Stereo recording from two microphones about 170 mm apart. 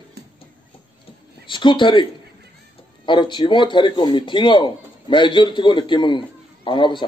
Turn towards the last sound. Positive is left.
turn(degrees=30)  # may be behind; listen again after turning